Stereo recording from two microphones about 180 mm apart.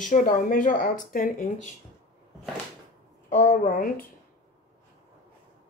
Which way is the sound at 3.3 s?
50° left (ahead or behind).